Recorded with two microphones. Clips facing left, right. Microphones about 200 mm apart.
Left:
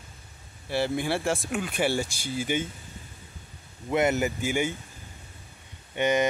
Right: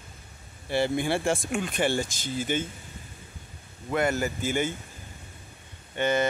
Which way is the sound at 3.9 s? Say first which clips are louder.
Left 2 dB; 20° left (ahead or behind).